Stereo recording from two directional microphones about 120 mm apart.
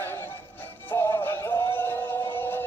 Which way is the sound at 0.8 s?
25° left (ahead or behind).